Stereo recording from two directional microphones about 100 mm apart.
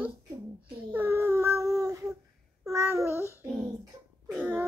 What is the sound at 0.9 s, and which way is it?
Child singing, 20° right (ahead or behind).